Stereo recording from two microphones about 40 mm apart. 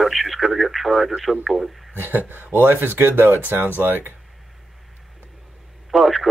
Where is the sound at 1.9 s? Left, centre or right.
Right.